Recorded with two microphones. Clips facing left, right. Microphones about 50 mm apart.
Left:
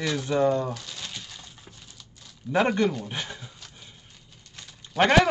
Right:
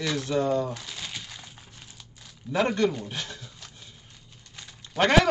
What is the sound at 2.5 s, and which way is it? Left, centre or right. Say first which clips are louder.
Speech: left 1 dB; centre.